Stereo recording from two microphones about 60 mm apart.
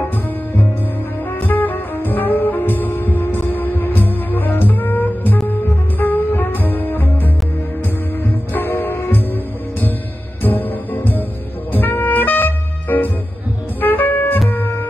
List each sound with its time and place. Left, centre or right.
1.4 s music: left
8.5 s music: left
10.4 s music: left